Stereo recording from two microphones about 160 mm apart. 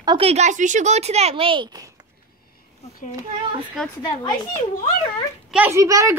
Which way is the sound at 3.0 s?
50° left (ahead or behind).